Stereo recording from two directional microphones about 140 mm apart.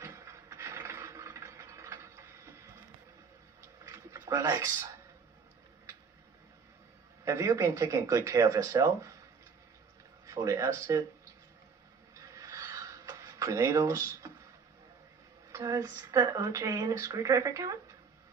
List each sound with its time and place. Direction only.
0.0 s mechanisms: 20° right (ahead or behind)
3.6 s a sound: 20° right (ahead or behind)
7.2 s speech: 20° right (ahead or behind)
10.2 s speech: 20° right (ahead or behind)
12.2 s a sound: 20° right (ahead or behind)
15.5 s speech: 25° right (ahead or behind)